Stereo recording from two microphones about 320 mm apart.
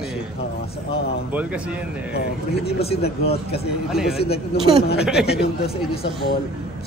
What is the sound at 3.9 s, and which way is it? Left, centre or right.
Speech, centre.